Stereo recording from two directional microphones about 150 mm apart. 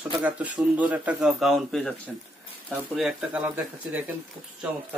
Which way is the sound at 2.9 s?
5° right (ahead or behind).